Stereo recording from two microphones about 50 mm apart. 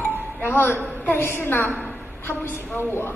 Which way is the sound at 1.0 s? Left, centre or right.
Left.